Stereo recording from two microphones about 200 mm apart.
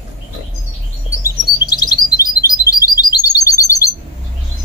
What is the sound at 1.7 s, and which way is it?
Chirp, 20° left (ahead or behind).